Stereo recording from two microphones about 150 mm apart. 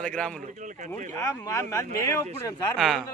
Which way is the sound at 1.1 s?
20° left (ahead or behind).